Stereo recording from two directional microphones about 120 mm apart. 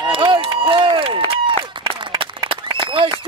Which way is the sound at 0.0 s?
45° right (ahead or behind).